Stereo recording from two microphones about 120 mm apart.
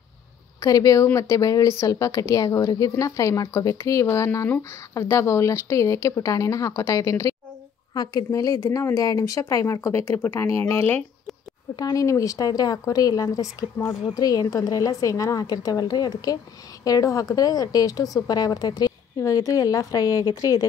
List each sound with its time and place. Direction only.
0.6 s speech: 30° left (ahead or behind)
11.7 s a woman's voice: 30° left (ahead or behind)